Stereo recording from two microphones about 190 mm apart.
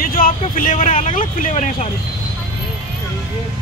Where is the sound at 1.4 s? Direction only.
40° left (ahead or behind).